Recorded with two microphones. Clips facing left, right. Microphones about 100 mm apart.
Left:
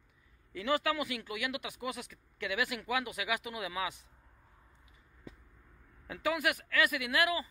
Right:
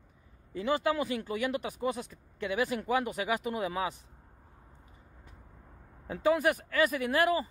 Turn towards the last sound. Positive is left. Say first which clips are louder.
# right 4 dB
turn(degrees=-40)  # may be behind; listen again after turning